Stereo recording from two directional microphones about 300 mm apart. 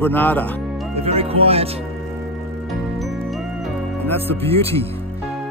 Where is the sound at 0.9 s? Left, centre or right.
Centre.